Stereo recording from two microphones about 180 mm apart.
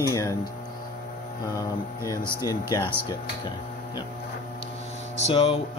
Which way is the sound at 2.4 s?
20° left (ahead or behind).